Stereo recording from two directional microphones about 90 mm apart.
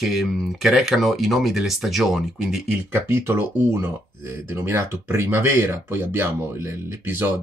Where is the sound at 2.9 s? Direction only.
25° right (ahead or behind).